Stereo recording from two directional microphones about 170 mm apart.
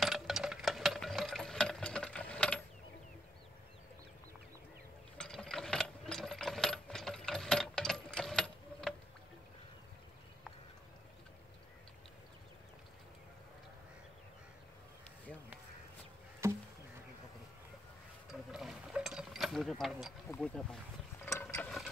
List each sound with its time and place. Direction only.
0.0 s a sound: centre (ahead or behind)
5.1 s ratchet: 5° left (ahead or behind)
16.4 s insect: 15° right (ahead or behind)
18.5 s mechanisms: centre (ahead or behind)
20.3 s speech: 5° left (ahead or behind)
21.2 s ratchet: 15° left (ahead or behind)